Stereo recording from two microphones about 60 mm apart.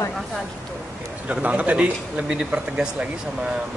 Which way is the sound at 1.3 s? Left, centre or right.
Right.